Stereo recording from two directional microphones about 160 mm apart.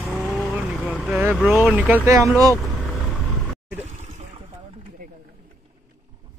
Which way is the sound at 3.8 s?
45° right (ahead or behind).